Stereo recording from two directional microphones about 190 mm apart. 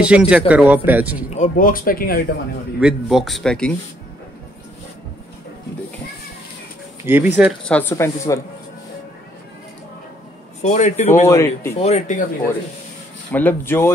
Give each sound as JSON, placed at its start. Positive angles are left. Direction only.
{"t": 0.0, "sound": "speech", "side_deg": -5}
{"t": 1.3, "sound": "speech", "side_deg": 45}
{"t": 2.8, "sound": "speech", "side_deg": -5}
{"t": 7.0, "sound": "speech", "side_deg": -10}
{"t": 7.9, "sound": "speech", "side_deg": 15}
{"t": 10.6, "sound": "speech", "side_deg": 40}
{"t": 11.2, "sound": "speech", "side_deg": 15}
{"t": 11.8, "sound": "speech", "side_deg": 40}
{"t": 13.3, "sound": "speech", "side_deg": 10}